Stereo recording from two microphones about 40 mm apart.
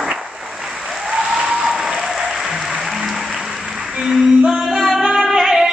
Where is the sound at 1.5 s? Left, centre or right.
Centre.